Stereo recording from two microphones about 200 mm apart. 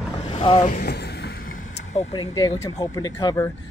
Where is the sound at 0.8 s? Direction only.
55° left (ahead or behind).